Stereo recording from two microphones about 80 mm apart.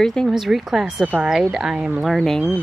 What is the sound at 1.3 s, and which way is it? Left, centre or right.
Speech, centre.